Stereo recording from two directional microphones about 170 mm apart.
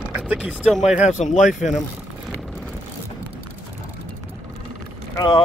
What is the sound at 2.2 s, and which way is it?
Vehicle, 5° left (ahead or behind).